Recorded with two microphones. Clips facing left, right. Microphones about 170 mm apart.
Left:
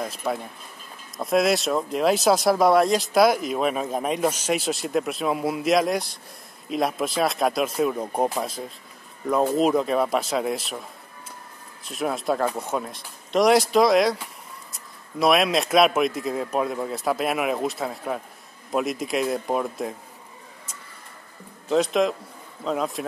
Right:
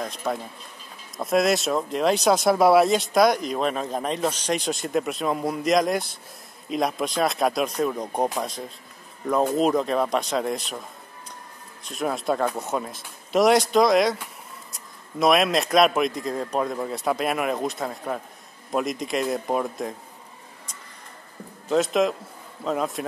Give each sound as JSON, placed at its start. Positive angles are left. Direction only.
{"t": 0.0, "sound": "speech", "side_deg": 5}
{"t": 11.8, "sound": "speech", "side_deg": 0}
{"t": 21.6, "sound": "speech", "side_deg": 0}